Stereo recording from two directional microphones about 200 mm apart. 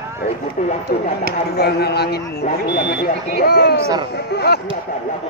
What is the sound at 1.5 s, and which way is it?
Speech, 55° left (ahead or behind).